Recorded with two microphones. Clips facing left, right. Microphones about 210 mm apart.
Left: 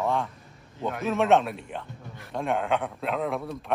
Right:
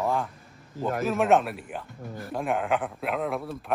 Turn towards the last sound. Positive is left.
turn(degrees=0)  # may be behind; listen again after turning